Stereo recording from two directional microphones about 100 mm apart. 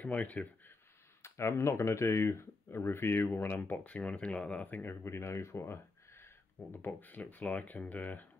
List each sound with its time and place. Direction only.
0.0 s speech: 15° left (ahead or behind)
1.2 s speech: 25° left (ahead or behind)